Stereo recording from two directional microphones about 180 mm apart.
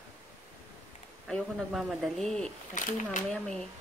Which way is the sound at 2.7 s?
45° left (ahead or behind).